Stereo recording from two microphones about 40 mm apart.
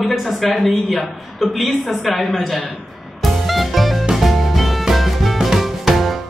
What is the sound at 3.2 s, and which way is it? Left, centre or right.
Music, centre.